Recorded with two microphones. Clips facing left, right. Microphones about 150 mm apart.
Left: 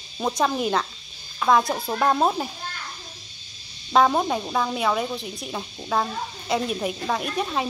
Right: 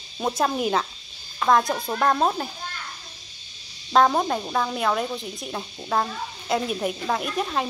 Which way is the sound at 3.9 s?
Centre (ahead or behind).